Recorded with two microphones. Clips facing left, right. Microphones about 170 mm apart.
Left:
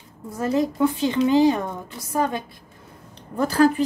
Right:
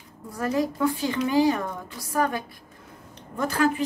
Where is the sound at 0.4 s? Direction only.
25° left (ahead or behind).